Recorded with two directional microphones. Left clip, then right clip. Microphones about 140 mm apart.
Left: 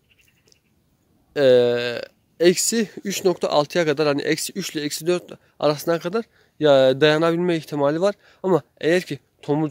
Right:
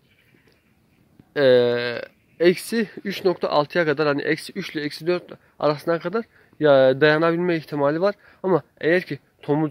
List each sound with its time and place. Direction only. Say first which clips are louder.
1.3 s speech: left 1 dB; 25° left (ahead or behind)